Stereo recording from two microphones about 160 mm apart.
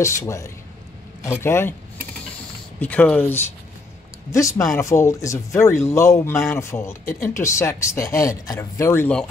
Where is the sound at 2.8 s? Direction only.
10° left (ahead or behind).